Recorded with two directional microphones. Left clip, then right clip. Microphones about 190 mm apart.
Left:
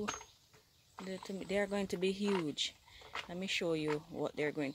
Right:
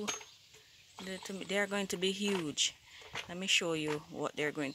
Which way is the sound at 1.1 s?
15° left (ahead or behind).